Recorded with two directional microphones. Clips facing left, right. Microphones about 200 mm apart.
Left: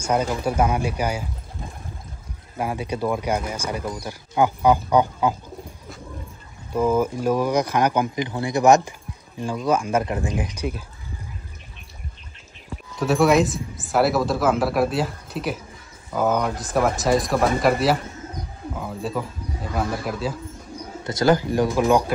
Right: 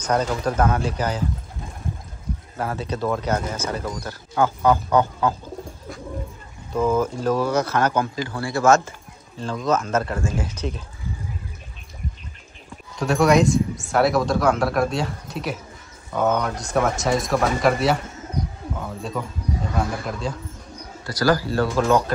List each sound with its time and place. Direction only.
0.0 s speech: 10° left (ahead or behind)
2.5 s speech: 15° left (ahead or behind)
6.7 s speech: 10° left (ahead or behind)
13.0 s speech: 5° left (ahead or behind)
21.0 s speech: 25° left (ahead or behind)